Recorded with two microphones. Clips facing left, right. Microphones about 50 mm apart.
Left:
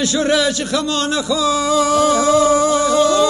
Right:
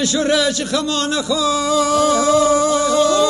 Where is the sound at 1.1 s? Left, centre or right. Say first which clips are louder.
Left 1 dB; centre.